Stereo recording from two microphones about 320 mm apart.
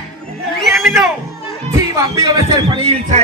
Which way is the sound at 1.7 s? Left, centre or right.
Centre.